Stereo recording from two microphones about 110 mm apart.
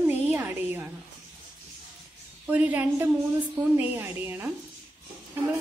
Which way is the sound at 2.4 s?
15° right (ahead or behind).